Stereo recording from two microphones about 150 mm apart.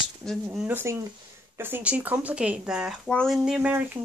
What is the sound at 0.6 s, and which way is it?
Speech, 15° right (ahead or behind).